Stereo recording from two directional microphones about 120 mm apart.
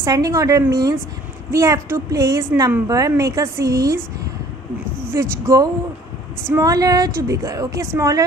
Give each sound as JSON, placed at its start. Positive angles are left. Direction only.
{"t": 0.0, "sound": "a woman's voice", "side_deg": -30}
{"t": 5.1, "sound": "a woman's voice", "side_deg": -25}